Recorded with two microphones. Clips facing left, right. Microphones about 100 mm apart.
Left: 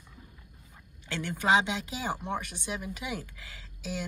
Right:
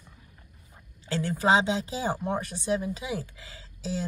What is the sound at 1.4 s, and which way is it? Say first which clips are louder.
Speech: right 2 dB; 30° right (ahead or behind).